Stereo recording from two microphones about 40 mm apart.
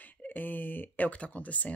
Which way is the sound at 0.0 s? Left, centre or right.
Left.